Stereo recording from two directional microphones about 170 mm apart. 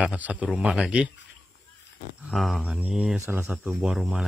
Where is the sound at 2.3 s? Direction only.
Centre (ahead or behind).